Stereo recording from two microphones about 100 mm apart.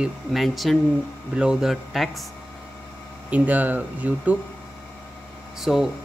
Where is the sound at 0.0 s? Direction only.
Centre (ahead or behind).